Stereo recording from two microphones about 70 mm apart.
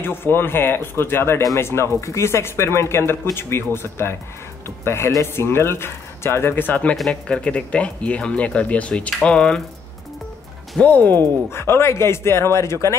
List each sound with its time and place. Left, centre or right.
0.0 s speech: left; by 9.6 s centre
10.8 s speech: left
11.5 s speech: left